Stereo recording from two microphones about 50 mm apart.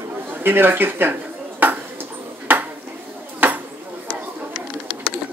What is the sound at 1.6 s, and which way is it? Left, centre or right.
Ping, right.